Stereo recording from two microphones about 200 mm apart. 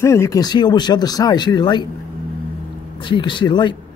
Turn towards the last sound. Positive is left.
turn(degrees=25)  # may be behind; listen again after turning